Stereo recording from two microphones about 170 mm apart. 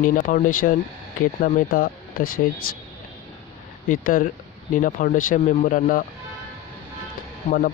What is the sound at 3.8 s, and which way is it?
Speech, 55° left (ahead or behind).